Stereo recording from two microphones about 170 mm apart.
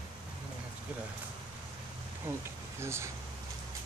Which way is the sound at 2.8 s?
15° right (ahead or behind).